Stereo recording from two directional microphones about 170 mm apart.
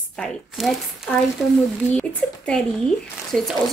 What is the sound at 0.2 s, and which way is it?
A woman's voice, centre (ahead or behind).